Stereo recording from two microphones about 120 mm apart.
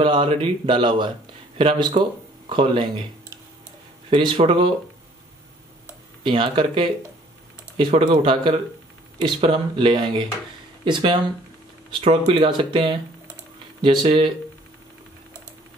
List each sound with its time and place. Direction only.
0.0 s speech: 45° right (ahead or behind)
4.1 s speech: 45° right (ahead or behind)
6.2 s speech: 45° right (ahead or behind)
12.3 s speech: 45° right (ahead or behind)